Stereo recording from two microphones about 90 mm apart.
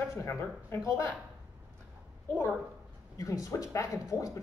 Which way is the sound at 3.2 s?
40° left (ahead or behind).